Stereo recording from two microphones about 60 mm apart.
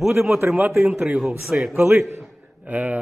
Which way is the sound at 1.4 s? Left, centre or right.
Centre.